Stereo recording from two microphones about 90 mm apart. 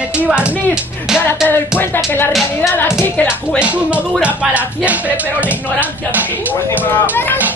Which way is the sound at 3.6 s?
15° right (ahead or behind).